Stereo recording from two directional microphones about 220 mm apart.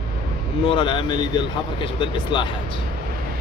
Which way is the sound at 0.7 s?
20° left (ahead or behind).